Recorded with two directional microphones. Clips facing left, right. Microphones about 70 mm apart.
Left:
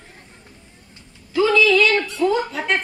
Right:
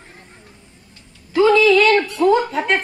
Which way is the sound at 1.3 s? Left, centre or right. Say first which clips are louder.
Right 3 dB; right.